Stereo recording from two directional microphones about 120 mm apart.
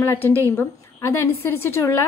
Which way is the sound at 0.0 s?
20° left (ahead or behind).